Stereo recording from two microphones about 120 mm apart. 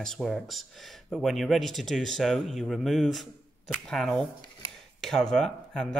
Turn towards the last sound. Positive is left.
turn(degrees=5)  # may be behind; listen again after turning